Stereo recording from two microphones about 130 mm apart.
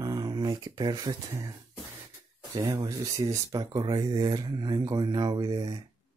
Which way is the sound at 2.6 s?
20° right (ahead or behind).